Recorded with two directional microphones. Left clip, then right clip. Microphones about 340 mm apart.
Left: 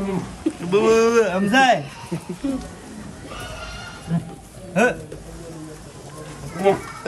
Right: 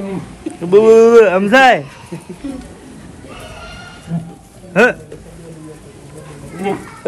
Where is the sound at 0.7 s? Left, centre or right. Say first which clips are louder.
Right 10 dB; centre.